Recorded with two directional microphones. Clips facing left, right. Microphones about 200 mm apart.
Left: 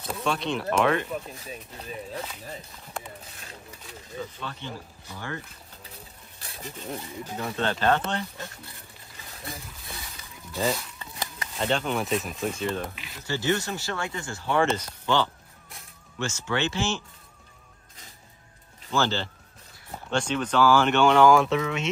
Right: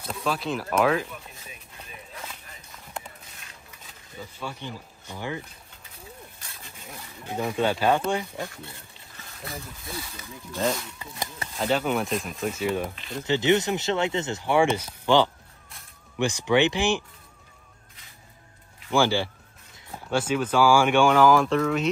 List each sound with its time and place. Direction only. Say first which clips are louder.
0.0 s speech: even; centre (ahead or behind)
2.1 s a sound: left 6 dB; 35° left (ahead or behind)
4.4 s speech: right 1 dB; 10° right (ahead or behind)
6.4 s wild animals: left 7 dB; 35° left (ahead or behind)
7.3 s speech: right 4 dB; 10° right (ahead or behind)
10.5 s speech: right 1 dB; centre (ahead or behind)
13.2 s speech: right 5 dB; 20° right (ahead or behind)
18.9 s speech: right 4 dB; 10° right (ahead or behind)